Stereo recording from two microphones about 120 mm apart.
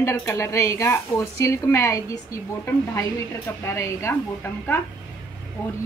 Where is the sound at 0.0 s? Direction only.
25° left (ahead or behind).